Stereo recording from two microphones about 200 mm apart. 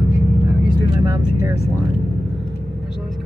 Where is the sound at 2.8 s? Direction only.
Centre (ahead or behind).